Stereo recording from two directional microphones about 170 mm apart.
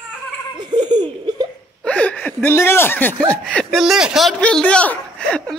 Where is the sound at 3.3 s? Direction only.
5° left (ahead or behind).